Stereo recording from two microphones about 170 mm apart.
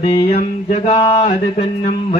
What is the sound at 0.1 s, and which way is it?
Speech, 40° left (ahead or behind).